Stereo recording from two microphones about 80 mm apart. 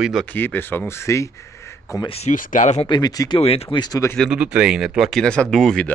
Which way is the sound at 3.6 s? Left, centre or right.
Left.